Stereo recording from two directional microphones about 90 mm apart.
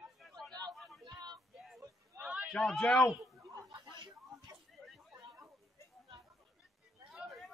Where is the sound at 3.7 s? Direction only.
55° right (ahead or behind).